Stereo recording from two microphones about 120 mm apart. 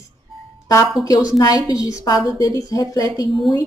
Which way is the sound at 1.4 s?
35° left (ahead or behind).